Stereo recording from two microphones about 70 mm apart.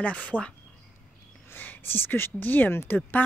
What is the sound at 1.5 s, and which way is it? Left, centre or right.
Speech, left.